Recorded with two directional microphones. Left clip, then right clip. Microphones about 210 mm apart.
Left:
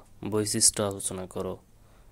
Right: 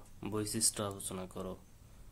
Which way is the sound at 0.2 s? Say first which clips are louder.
Left 10 dB; 30° left (ahead or behind).